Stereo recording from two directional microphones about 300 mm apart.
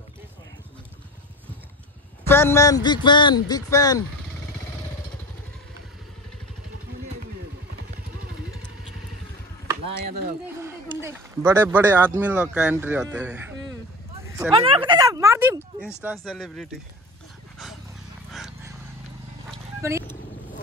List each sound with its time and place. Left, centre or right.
2.2 s a man's voice: centre
9.9 s speech: right
10.6 s a man's voice: centre
19.8 s speech: centre